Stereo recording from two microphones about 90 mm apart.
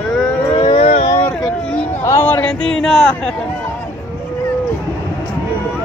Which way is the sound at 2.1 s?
20° left (ahead or behind).